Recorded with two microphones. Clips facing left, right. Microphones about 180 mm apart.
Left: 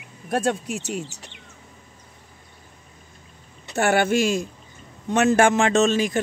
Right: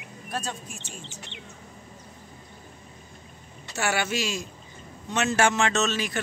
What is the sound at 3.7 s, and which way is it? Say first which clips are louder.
Speech: left 8 dB; 55° left (ahead or behind).